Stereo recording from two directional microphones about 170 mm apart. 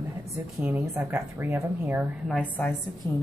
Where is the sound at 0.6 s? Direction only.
10° right (ahead or behind).